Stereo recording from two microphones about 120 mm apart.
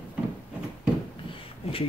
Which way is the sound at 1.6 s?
55° left (ahead or behind).